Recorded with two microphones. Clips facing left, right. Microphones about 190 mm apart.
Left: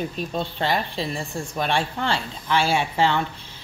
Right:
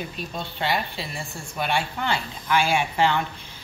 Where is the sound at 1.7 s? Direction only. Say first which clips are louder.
Left 1 dB; 30° left (ahead or behind).